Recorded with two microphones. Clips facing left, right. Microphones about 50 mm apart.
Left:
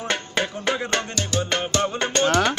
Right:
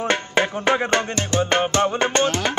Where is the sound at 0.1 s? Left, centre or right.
Right.